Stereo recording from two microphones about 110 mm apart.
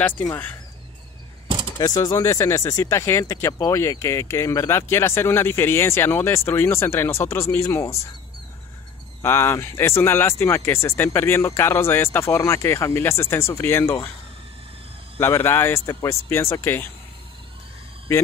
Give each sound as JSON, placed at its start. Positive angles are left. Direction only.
{"t": 1.8, "sound": "speech", "side_deg": 35}
{"t": 9.2, "sound": "speech", "side_deg": 20}
{"t": 15.1, "sound": "speech", "side_deg": 20}